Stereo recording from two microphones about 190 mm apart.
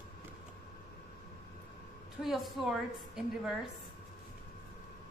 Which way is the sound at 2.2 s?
Centre (ahead or behind).